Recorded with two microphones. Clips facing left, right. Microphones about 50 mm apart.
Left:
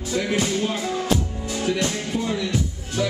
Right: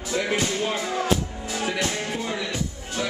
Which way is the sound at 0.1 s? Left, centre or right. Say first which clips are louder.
Left 1 dB; centre.